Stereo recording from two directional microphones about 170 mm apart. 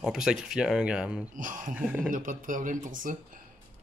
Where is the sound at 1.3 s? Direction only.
50° right (ahead or behind).